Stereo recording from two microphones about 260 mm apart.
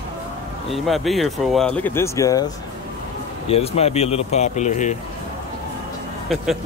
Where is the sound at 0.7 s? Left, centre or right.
Centre.